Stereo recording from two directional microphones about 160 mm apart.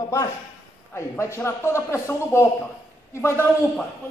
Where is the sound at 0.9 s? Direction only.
15° left (ahead or behind).